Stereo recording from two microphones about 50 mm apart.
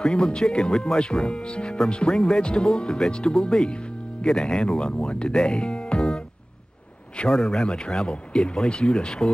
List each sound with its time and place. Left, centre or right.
0.0 s speech: centre